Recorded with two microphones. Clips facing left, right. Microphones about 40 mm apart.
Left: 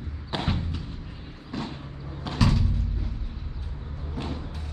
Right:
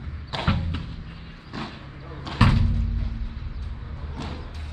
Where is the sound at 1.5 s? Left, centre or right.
Right.